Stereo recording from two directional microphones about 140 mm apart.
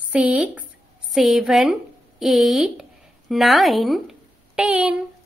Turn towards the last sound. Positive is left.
turn(degrees=-5)  # may be behind; listen again after turning